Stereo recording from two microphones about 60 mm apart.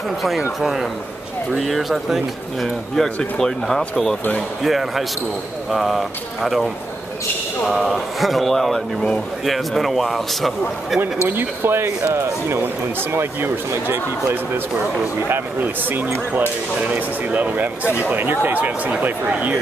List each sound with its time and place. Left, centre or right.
0.6 s a man's voice: centre
11.2 s speech: right